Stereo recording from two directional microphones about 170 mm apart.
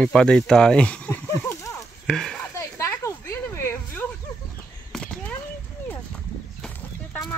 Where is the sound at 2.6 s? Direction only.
15° left (ahead or behind).